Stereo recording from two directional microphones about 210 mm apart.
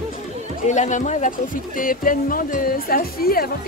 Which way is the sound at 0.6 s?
35° left (ahead or behind).